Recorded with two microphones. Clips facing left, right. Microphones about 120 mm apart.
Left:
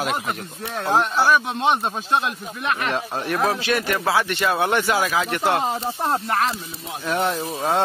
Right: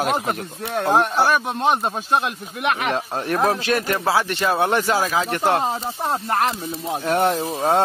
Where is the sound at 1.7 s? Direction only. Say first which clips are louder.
Right 2 dB; 5° right (ahead or behind).